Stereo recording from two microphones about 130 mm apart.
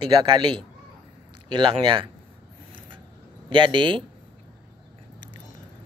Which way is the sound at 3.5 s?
40° right (ahead or behind).